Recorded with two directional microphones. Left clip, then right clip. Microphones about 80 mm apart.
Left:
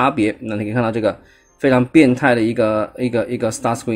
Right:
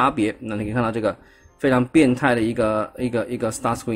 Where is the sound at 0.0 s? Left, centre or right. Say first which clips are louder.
Left 3 dB; left.